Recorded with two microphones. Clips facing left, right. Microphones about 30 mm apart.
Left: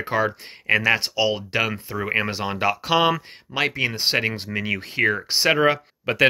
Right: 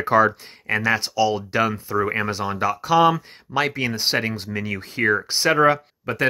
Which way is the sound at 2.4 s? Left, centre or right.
Left.